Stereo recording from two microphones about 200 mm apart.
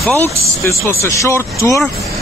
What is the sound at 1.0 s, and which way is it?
Speech, 15° left (ahead or behind).